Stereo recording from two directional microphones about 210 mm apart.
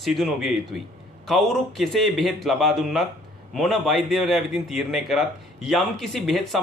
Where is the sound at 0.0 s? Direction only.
Centre (ahead or behind).